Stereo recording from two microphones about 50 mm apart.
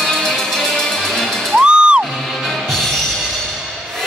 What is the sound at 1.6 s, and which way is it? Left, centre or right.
Music, centre.